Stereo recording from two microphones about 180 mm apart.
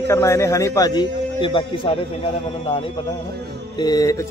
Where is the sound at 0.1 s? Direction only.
15° left (ahead or behind).